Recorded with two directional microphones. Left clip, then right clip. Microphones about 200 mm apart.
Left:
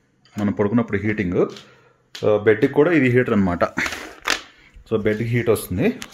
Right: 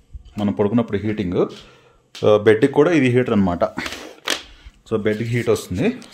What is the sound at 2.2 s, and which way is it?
Speech, 20° right (ahead or behind).